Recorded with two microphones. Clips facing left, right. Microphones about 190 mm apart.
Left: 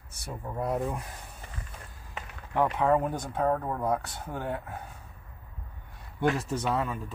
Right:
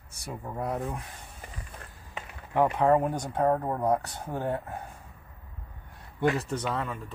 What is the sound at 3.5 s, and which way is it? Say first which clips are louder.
Speech: right 2 dB; 20° right (ahead or behind).